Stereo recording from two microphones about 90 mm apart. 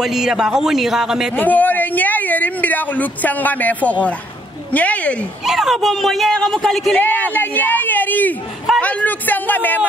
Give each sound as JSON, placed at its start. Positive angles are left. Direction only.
{"t": 0.0, "sound": "speech", "side_deg": -5}
{"t": 1.3, "sound": "speech", "side_deg": 20}
{"t": 5.4, "sound": "speech", "side_deg": -5}
{"t": 6.9, "sound": "speech", "side_deg": 20}